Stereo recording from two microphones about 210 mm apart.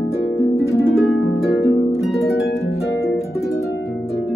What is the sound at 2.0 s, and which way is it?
Harp, centre (ahead or behind).